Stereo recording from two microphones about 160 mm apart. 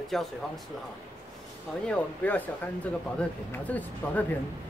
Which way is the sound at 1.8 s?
10° left (ahead or behind).